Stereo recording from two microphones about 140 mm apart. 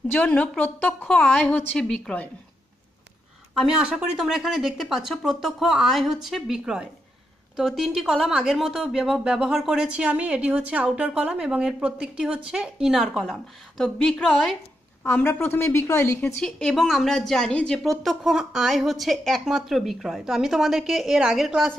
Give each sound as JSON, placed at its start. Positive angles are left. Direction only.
{"t": 0.1, "sound": "a woman's voice", "side_deg": 10}
{"t": 3.5, "sound": "a woman's voice", "side_deg": -5}
{"t": 15.0, "sound": "a woman's voice", "side_deg": 15}
{"t": 16.3, "sound": "a woman's voice", "side_deg": 5}